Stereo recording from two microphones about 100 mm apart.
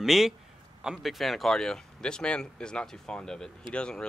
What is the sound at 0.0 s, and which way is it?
A man's voice, 5° right (ahead or behind).